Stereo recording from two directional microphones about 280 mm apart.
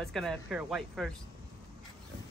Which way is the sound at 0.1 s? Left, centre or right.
Centre.